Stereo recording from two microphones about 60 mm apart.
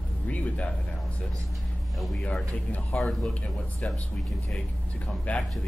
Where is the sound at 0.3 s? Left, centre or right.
Left.